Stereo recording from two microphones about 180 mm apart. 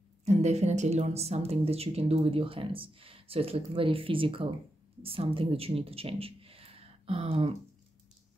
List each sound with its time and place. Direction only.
0.2 s a woman's voice: 40° right (ahead or behind)